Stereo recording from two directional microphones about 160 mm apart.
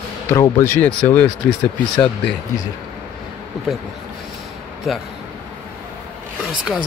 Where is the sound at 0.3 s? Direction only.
15° left (ahead or behind).